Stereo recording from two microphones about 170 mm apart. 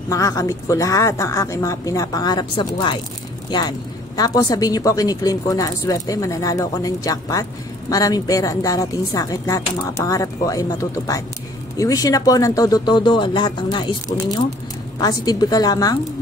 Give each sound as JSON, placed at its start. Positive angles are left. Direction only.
{"t": 0.1, "sound": "speech", "side_deg": 20}
{"t": 15.0, "sound": "speech", "side_deg": 20}